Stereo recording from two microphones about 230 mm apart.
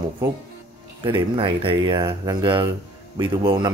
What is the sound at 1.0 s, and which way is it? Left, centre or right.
A man's voice, right.